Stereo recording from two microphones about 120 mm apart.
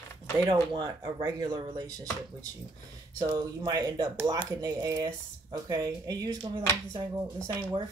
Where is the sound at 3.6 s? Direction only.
30° right (ahead or behind).